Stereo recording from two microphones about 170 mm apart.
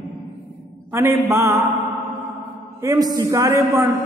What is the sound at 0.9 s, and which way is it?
Speech, 15° right (ahead or behind).